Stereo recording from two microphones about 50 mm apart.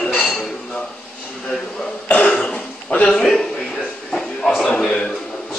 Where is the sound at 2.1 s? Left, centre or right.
Left.